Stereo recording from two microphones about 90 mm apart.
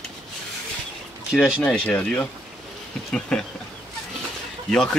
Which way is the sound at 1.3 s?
10° right (ahead or behind).